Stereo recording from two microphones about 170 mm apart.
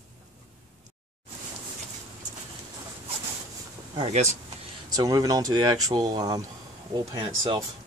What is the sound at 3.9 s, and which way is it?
Speech, 35° right (ahead or behind).